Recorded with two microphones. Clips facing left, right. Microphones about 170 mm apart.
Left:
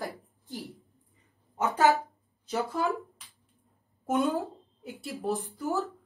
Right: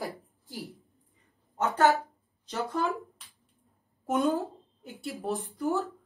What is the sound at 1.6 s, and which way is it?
Speech, 15° left (ahead or behind).